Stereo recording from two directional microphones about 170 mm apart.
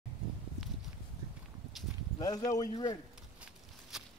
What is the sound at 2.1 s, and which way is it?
Speech, 20° left (ahead or behind).